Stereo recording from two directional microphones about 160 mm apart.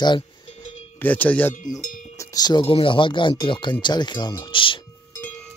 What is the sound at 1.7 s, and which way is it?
Cowbell, 50° left (ahead or behind).